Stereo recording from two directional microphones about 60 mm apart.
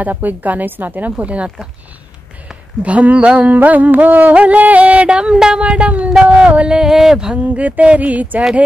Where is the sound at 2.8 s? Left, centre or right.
Right.